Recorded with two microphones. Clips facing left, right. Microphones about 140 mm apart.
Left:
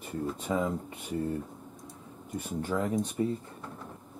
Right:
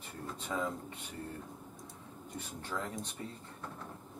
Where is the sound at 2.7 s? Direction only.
20° left (ahead or behind).